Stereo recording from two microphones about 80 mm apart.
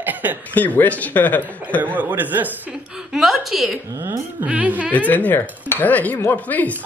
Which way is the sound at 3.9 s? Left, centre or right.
Right.